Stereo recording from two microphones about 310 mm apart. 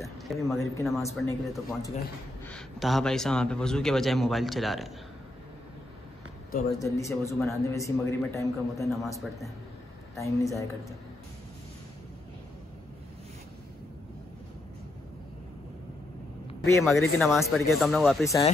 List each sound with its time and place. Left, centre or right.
0.0 s a man's voice: centre
6.8 s a man's voice: centre
16.4 s a man's voice: centre
18.2 s a man's voice: centre